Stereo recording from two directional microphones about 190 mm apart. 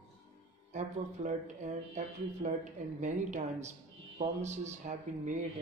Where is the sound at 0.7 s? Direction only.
40° right (ahead or behind).